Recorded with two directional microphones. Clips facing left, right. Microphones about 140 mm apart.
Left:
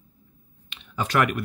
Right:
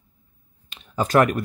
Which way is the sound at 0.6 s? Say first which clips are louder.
Right 5 dB; 40° right (ahead or behind).